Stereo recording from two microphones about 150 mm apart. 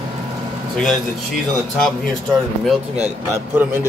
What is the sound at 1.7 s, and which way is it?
Speech, centre (ahead or behind).